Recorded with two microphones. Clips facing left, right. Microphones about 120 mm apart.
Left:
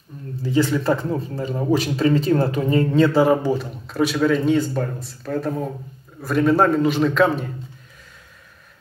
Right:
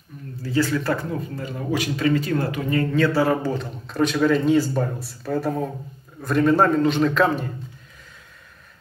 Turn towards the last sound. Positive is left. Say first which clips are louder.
# left 1 dB
turn(degrees=0)  # may be behind; listen again after turning